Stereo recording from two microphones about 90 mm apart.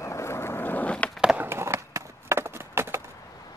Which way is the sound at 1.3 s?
25° right (ahead or behind).